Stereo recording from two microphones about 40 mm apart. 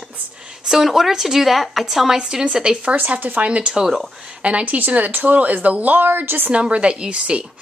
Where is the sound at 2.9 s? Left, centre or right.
Right.